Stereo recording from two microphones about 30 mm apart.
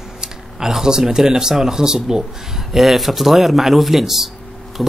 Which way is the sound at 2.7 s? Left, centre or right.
Centre.